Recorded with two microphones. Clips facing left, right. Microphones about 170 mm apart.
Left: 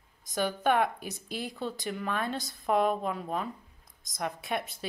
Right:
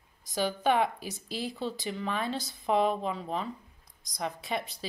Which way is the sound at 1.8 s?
5° left (ahead or behind).